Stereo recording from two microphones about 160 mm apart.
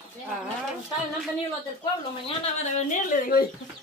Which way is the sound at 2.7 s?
55° left (ahead or behind).